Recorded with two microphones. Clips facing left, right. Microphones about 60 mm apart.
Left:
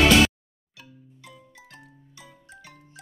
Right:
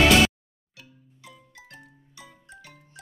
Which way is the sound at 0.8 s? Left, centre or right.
Centre.